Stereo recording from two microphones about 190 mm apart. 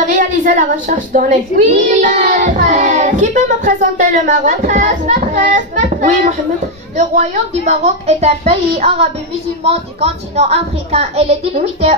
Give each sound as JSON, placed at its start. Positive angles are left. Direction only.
{"t": 0.1, "sound": "a child's voice", "side_deg": -45}